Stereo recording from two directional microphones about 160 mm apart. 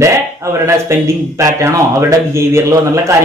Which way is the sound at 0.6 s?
20° right (ahead or behind).